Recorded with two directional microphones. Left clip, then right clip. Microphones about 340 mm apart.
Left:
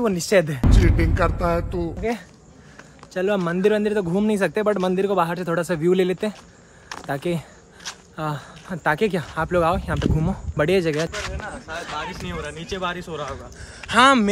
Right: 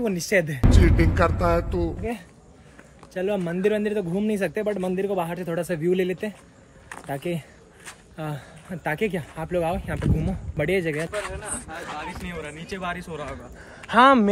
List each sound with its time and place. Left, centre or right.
0.0 s a man's voice: centre
12.3 s speech: centre